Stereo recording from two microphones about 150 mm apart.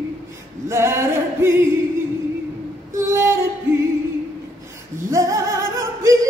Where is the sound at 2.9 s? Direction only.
20° right (ahead or behind).